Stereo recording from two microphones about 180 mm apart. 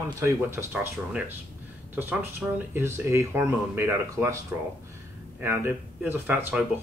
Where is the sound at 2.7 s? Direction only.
15° right (ahead or behind).